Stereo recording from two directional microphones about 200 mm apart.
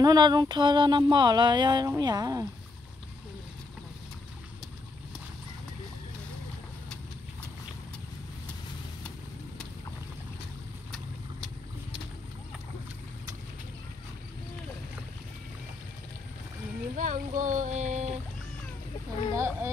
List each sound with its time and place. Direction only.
0.0 s music: 20° right (ahead or behind)
16.9 s speech: 40° right (ahead or behind)
19.3 s speech: 15° right (ahead or behind)